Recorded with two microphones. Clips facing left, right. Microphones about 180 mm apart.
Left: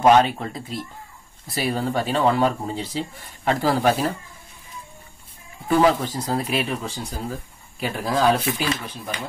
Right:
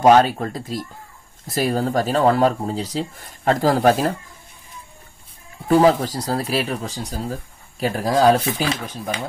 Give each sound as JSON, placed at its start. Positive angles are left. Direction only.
{"t": 0.0, "sound": "speech", "side_deg": -40}
{"t": 5.7, "sound": "speech", "side_deg": -35}